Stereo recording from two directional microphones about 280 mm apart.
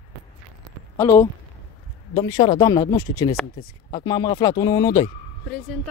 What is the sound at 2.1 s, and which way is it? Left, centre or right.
Speech, centre.